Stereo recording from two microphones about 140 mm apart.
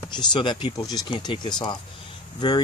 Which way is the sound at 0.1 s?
30° left (ahead or behind).